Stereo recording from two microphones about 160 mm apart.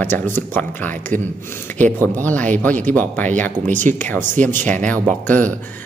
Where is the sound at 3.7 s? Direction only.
50° right (ahead or behind).